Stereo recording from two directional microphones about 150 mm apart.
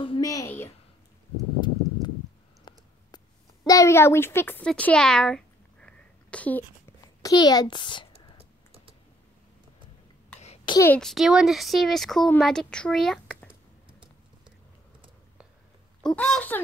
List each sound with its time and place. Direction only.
0.2 s a sound: 20° left (ahead or behind)
1.6 s clip-clop: 30° left (ahead or behind)
2.7 s clicking: 30° left (ahead or behind)
3.6 s a sound: 20° left (ahead or behind)
7.2 s a child's voice: 25° left (ahead or behind)
8.1 s typing: 40° right (ahead or behind)
11.0 s speech: centre (ahead or behind)
16.0 s speech: 5° left (ahead or behind)